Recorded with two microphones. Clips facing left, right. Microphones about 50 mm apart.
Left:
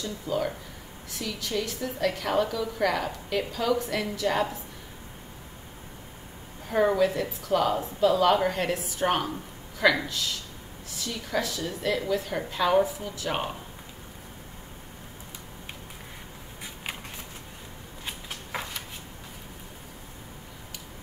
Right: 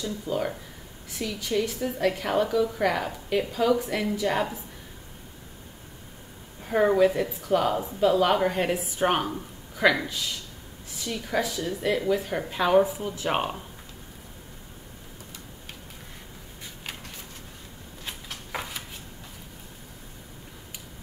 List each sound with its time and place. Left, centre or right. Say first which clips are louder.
0.0 s a woman's voice: even; centre
6.7 s a woman's voice: right 2 dB; centre
18.0 s a sound: left 1 dB; centre